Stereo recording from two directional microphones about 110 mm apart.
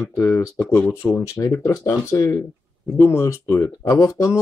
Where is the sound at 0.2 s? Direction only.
25° left (ahead or behind).